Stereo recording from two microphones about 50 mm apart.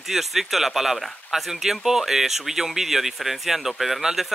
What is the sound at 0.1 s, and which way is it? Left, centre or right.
Speech, centre.